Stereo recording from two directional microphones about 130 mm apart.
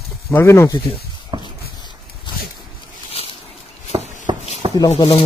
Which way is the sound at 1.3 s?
35° right (ahead or behind).